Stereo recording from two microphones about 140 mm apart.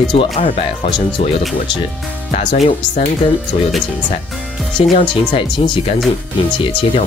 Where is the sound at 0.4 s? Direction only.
40° left (ahead or behind).